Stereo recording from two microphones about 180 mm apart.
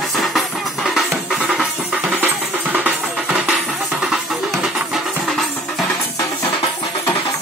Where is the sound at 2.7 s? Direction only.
5° right (ahead or behind).